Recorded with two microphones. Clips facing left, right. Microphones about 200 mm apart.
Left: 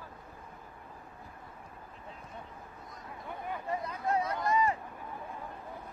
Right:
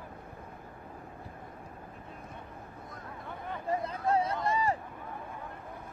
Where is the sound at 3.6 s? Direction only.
25° right (ahead or behind).